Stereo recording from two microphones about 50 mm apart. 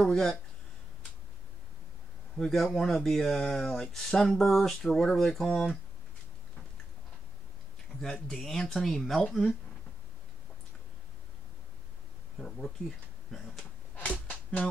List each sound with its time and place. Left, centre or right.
0.0 s speech: centre
2.3 s speech: centre
8.0 s speech: centre
12.4 s speech: centre
14.2 s a sound: left